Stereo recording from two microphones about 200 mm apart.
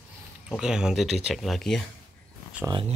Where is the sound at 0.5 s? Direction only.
5° right (ahead or behind).